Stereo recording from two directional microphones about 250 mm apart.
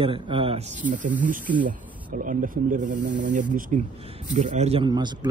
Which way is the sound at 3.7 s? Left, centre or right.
Right.